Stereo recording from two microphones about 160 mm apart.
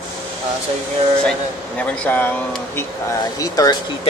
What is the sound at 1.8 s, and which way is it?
Speech, 10° left (ahead or behind).